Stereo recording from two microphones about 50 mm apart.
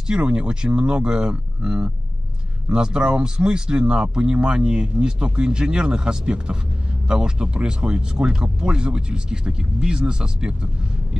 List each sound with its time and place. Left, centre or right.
0.0 s speech: centre